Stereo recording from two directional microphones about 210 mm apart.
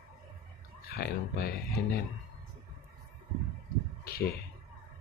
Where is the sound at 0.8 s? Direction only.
45° left (ahead or behind).